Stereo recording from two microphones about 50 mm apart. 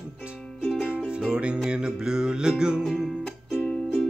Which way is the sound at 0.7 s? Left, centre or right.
Centre.